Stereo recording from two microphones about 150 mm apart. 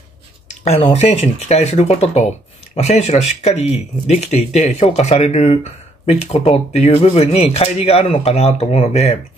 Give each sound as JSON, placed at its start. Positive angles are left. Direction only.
{"t": 0.7, "sound": "speech", "side_deg": 45}